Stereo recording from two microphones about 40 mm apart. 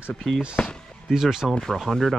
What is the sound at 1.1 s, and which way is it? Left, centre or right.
Speech, centre.